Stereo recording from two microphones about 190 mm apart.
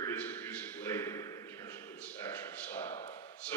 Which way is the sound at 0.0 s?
10° left (ahead or behind).